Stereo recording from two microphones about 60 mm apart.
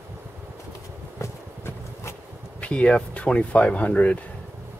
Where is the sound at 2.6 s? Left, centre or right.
Left.